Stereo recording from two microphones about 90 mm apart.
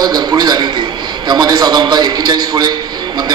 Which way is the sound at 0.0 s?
45° right (ahead or behind).